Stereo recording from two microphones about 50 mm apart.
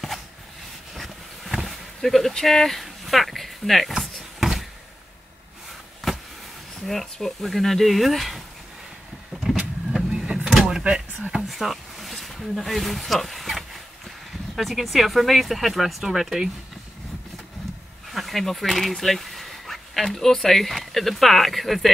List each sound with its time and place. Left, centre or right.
0.9 s vehicle: centre
1.7 s speech: centre
4.0 s a sound: centre
6.0 s a sound: centre
6.9 s speech: centre
9.3 s vehicle: centre
10.1 s vehicle: centre
10.7 s door: centre
11.4 s speech: centre
18.1 s speech: centre